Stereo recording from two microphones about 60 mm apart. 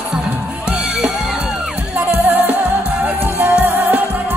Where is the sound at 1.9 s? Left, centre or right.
Right.